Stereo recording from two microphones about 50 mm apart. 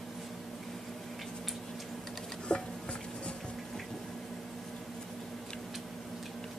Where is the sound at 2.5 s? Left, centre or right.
Left.